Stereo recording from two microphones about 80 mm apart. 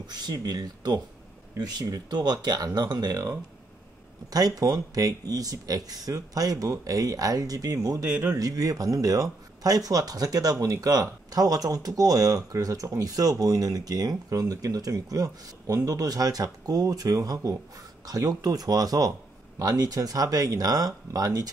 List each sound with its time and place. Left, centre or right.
0.0 s speech: right
4.3 s speech: right
8.1 s speech: right
8.4 s speech: right